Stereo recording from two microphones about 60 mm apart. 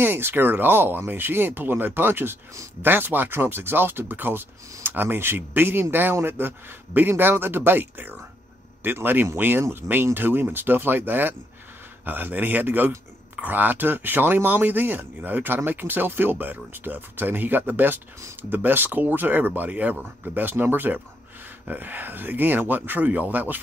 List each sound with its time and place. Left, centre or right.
0.0 s a man's voice: right